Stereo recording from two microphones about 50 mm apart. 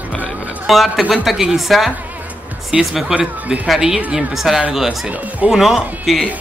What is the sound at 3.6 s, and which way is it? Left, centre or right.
Speech, centre.